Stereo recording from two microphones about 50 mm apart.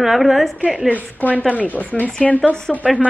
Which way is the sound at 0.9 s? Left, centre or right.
Left.